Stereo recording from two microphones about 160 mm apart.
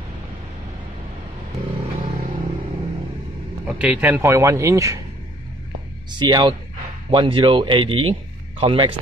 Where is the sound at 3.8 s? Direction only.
10° right (ahead or behind).